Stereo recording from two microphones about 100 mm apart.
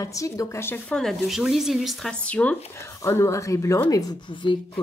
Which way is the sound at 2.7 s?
25° left (ahead or behind).